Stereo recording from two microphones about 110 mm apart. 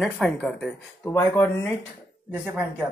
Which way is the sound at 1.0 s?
20° left (ahead or behind).